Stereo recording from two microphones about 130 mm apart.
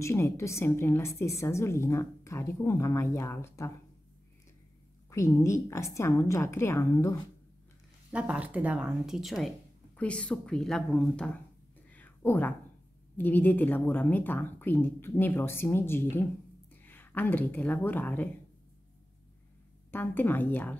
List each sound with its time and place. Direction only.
0.0 s a woman's voice: 20° left (ahead or behind)
5.1 s a woman's voice: 20° left (ahead or behind)
8.1 s a woman's voice: 10° right (ahead or behind); by 11.2 s 5° left (ahead or behind)
11.9 s a sound: 15° left (ahead or behind)
13.2 s a woman's voice: 15° left (ahead or behind)
19.9 s a woman's voice: 15° left (ahead or behind)